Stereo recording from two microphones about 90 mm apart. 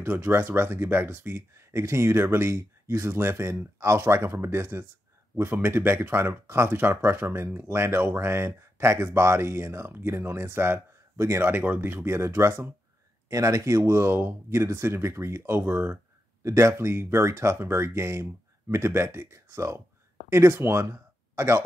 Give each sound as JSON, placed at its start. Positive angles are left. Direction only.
{"t": 0.0, "sound": "speech", "side_deg": -25}
{"t": 13.3, "sound": "speech", "side_deg": -40}
{"t": 16.4, "sound": "speech", "side_deg": -35}